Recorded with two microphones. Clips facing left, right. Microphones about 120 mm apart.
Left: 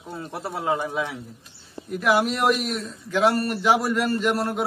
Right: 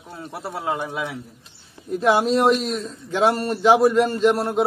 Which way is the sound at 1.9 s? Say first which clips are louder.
Right 4 dB; 25° right (ahead or behind).